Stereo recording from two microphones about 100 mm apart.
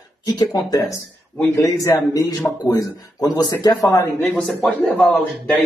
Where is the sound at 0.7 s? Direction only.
35° left (ahead or behind).